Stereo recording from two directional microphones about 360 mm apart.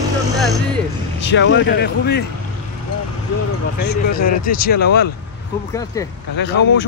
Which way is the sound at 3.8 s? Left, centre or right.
Left.